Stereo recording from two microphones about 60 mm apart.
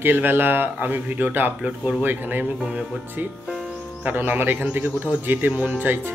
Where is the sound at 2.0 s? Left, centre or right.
Right.